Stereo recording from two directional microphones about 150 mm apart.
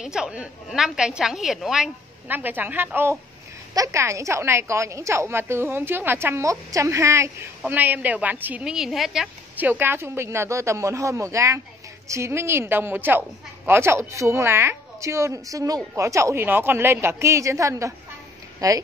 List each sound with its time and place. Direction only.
0.0 s a woman's voice: 5° right (ahead or behind); by 18.8 s 25° right (ahead or behind)